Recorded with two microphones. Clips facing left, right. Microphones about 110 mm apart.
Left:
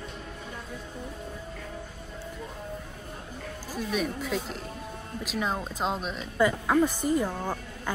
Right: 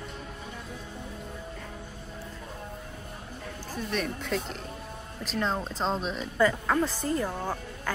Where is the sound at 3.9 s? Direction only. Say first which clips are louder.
Left 1 dB; 5° left (ahead or behind).